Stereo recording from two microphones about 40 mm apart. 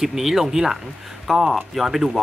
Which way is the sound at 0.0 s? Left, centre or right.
Centre.